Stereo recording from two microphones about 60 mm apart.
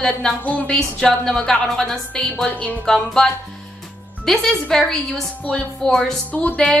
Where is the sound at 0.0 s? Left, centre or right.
Centre.